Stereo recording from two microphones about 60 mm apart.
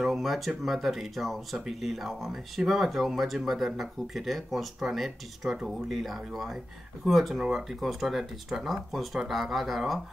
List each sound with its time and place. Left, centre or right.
0.0 s speech: centre